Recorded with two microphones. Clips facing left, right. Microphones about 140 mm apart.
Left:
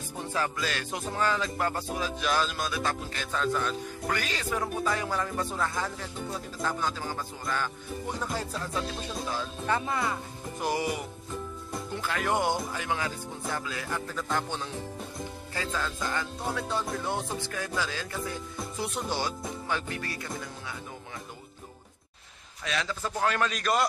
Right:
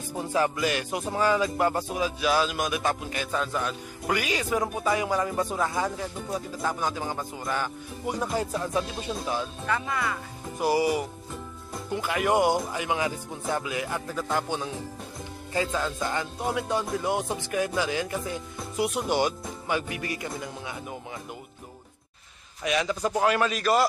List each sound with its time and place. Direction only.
0.2 s speech: 15° right (ahead or behind)
9.7 s speech: 30° left (ahead or behind)
10.6 s speech: 10° right (ahead or behind)
22.6 s speech: 15° right (ahead or behind)